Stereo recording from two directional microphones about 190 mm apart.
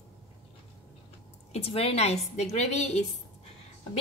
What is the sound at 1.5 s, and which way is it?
A woman's voice, 30° left (ahead or behind).